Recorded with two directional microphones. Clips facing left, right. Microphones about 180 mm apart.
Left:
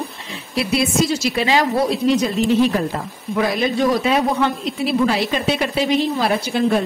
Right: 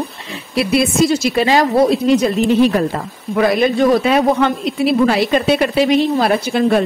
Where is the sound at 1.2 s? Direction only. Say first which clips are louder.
Right 4 dB; 45° right (ahead or behind).